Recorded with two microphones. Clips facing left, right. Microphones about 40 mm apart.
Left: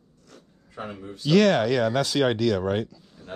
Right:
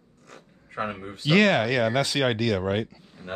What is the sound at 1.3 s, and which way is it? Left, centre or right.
Speech, centre.